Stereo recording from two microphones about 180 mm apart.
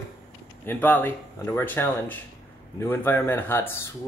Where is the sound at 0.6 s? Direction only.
10° left (ahead or behind).